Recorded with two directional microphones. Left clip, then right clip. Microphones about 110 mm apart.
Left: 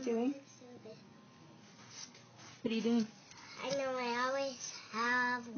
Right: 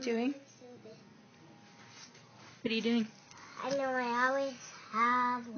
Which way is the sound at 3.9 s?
30° left (ahead or behind).